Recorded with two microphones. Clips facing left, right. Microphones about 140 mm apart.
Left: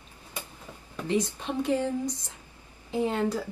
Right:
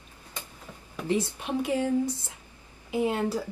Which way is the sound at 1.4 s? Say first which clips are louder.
Even; 10° right (ahead or behind).